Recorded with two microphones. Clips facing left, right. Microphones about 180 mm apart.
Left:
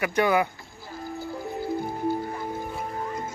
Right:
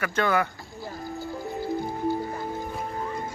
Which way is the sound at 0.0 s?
15° left (ahead or behind).